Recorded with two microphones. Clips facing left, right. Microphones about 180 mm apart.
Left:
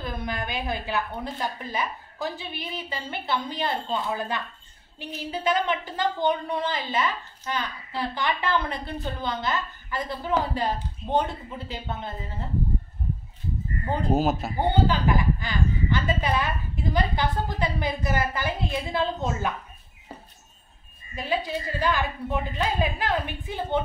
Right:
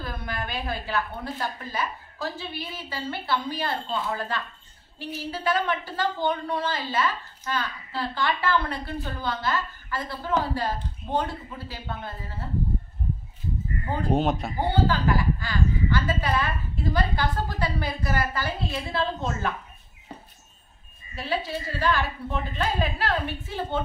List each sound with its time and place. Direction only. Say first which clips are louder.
0.0 s a woman's voice: left 2 dB; 20° left (ahead or behind)
14.1 s speech: even; 5° left (ahead or behind)
14.7 s a woman's voice: even; 20° left (ahead or behind)
21.1 s a woman's voice: left 1 dB; 15° left (ahead or behind)